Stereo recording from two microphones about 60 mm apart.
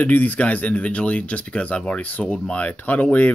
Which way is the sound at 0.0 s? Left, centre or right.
Left.